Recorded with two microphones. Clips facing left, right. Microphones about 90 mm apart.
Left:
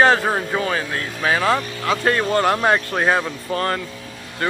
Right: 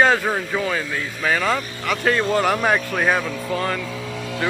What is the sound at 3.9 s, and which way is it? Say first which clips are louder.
Music: right 7 dB; 90° right.